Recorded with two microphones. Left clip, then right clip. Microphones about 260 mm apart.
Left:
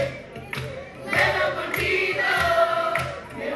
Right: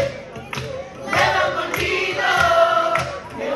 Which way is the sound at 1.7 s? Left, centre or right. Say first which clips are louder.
Right 2 dB; right.